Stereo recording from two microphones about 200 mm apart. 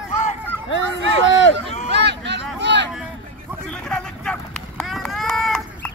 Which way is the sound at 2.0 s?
60° right (ahead or behind).